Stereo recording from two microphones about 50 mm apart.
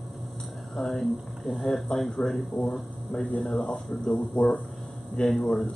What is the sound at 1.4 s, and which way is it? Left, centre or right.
Speech, centre.